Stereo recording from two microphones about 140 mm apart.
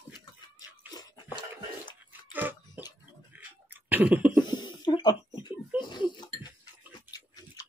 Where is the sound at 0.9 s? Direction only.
25° left (ahead or behind).